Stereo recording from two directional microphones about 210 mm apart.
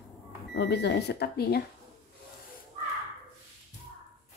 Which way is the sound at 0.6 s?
55° left (ahead or behind).